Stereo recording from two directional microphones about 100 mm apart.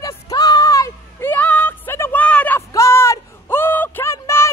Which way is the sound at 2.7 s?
30° left (ahead or behind).